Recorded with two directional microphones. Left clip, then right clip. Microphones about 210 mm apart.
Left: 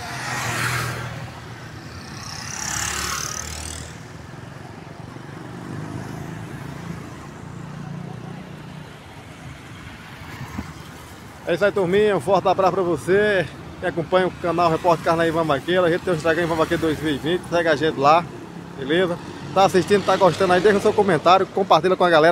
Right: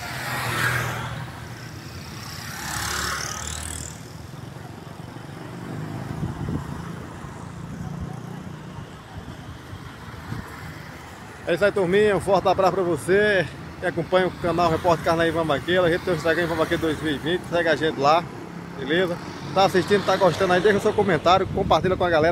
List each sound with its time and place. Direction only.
0.0 s vehicle: centre (ahead or behind)
0.7 s a sound: 50° left (ahead or behind)
3.1 s vehicle: 45° left (ahead or behind)
11.4 s speech: 5° left (ahead or behind)